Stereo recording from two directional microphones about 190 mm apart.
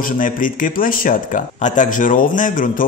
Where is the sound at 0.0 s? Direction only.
45° left (ahead or behind).